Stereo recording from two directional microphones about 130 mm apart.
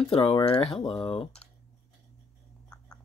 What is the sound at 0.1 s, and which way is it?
Speech, 45° left (ahead or behind).